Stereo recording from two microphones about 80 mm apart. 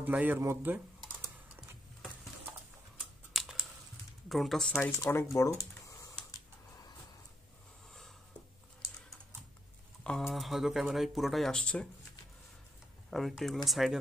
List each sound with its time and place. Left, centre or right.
0.0 s speech: right
3.0 s computer keyboard: centre
4.3 s speech: centre
4.9 s speech: left
10.0 s speech: centre
13.1 s speech: centre